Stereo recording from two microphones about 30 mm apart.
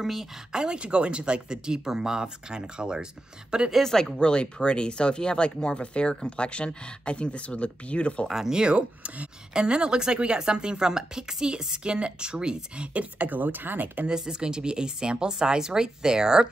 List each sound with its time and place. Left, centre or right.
0.0 s speech: centre
0.5 s speech: right
0.7 s speech: right
3.8 s speech: centre
4.2 s speech: left
8.5 s speech: right
13.2 s speech: right
14.0 s speech: right